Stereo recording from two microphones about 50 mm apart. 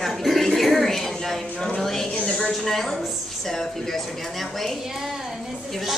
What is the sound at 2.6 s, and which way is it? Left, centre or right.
Speech, centre.